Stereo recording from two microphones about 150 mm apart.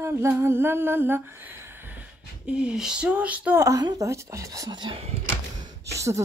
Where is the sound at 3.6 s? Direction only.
25° right (ahead or behind); by 5.1 s 40° right (ahead or behind).